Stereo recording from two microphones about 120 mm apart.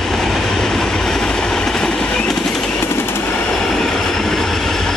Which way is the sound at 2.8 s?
20° left (ahead or behind).